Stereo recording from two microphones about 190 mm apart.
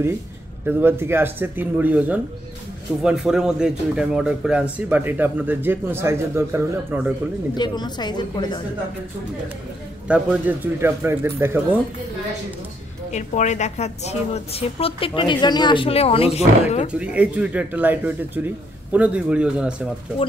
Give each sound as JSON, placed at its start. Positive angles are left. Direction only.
{"t": 0.7, "sound": "speech", "side_deg": -10}
{"t": 7.5, "sound": "a woman's voice", "side_deg": 20}
{"t": 10.0, "sound": "speech", "side_deg": -5}
{"t": 13.1, "sound": "a woman's voice", "side_deg": 40}
{"t": 16.9, "sound": "speech", "side_deg": -5}